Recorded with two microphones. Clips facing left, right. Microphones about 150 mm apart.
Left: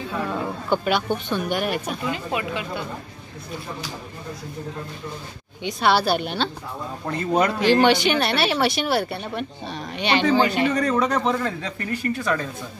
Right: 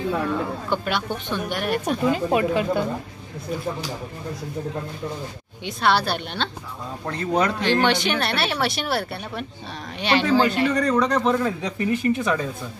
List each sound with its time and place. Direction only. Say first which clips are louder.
0.7 s speech: left 7 dB; 5° left (ahead or behind)
2.0 s speech: right 9 dB; 40° right (ahead or behind)
5.6 s speech: left 1 dB; centre (ahead or behind)
11.6 s speech: right 5 dB; 20° right (ahead or behind)